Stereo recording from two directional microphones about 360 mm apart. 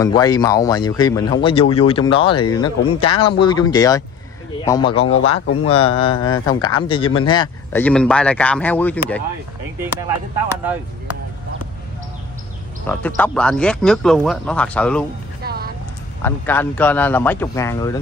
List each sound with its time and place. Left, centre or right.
0.0 s speech: centre
12.8 s speech: centre
15.4 s a sound: right
16.2 s speech: centre